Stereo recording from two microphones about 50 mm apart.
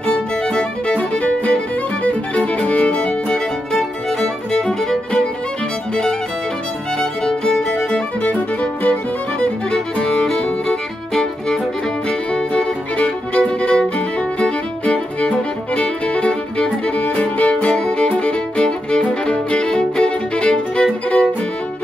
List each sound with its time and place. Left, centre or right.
0.0 s music: centre
3.7 s music: centre
7.0 s music: centre
7.7 s music: left
9.4 s music: centre